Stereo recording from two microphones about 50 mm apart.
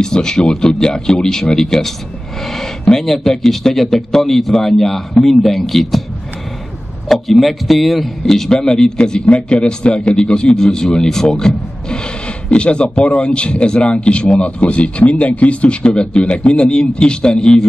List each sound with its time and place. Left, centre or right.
0.0 s a man's voice: centre
7.1 s a man's voice: centre